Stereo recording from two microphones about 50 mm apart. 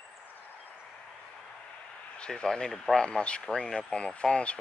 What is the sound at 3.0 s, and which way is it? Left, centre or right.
Speech, left.